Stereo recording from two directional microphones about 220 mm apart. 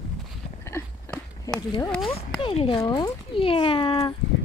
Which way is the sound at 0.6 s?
10° left (ahead or behind).